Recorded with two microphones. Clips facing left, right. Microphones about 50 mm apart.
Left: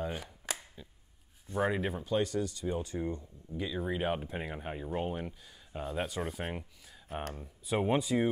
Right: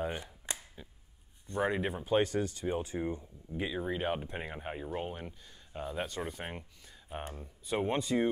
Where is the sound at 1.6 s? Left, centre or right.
Centre.